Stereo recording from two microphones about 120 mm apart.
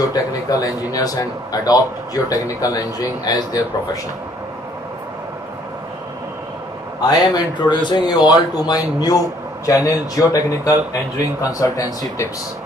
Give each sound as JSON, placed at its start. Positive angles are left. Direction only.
{"t": 0.1, "sound": "speech", "side_deg": 30}
{"t": 7.0, "sound": "speech", "side_deg": 35}